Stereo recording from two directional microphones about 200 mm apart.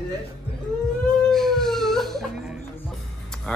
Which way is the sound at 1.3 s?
Centre (ahead or behind).